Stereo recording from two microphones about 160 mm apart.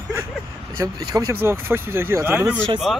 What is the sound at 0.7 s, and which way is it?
Speech, 20° right (ahead or behind).